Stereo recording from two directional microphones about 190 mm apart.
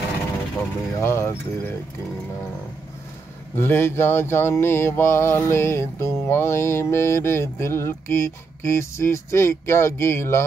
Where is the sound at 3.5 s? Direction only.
10° left (ahead or behind).